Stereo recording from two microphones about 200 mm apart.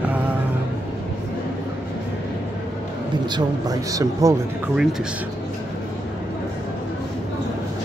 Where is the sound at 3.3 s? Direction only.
15° right (ahead or behind).